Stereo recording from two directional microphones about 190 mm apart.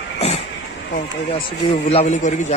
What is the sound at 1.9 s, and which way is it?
Speech, 35° left (ahead or behind).